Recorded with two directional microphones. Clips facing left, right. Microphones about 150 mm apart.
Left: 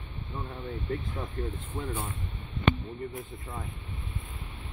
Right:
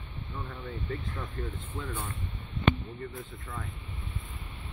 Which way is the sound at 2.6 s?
Centre (ahead or behind).